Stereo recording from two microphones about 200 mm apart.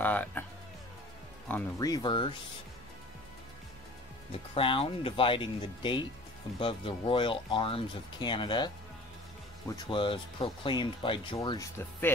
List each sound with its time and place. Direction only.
0.0 s speech: 10° left (ahead or behind)
1.5 s speech: 20° left (ahead or behind)
4.3 s speech: 25° left (ahead or behind)